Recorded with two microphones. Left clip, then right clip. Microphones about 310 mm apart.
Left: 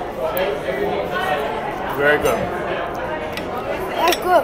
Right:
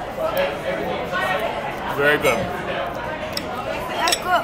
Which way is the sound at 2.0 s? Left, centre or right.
Right.